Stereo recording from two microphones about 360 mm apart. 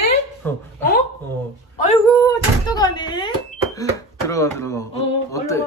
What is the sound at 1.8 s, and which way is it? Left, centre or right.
Speech, centre.